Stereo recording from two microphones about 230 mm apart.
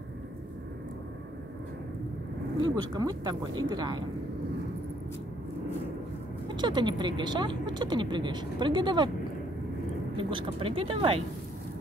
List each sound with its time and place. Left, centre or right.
2.9 s speech: centre
6.5 s speech: centre
10.1 s speech: right